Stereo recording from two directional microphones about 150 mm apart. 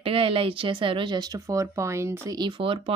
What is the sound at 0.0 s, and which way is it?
Speech, 40° right (ahead or behind).